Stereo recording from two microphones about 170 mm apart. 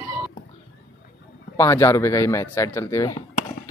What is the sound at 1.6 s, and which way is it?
A man's voice, 20° left (ahead or behind).